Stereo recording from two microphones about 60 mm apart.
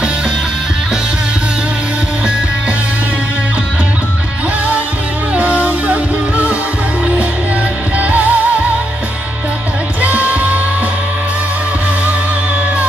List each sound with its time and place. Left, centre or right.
5.3 s music: right
8.0 s music: right
10.0 s music: right